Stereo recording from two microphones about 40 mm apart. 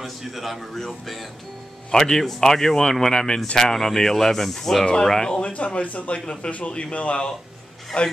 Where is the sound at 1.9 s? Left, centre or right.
Centre.